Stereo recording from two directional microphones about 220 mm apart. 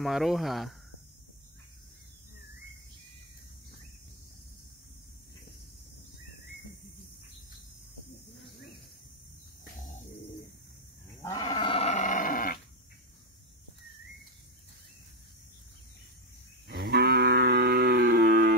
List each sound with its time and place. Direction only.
0.0 s speech: centre (ahead or behind)
11.2 s goat: 20° left (ahead or behind); by 12.5 s 40° left (ahead or behind)
16.6 s cattle: 45° right (ahead or behind)